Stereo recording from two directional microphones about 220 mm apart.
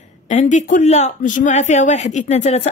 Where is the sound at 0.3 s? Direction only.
35° left (ahead or behind).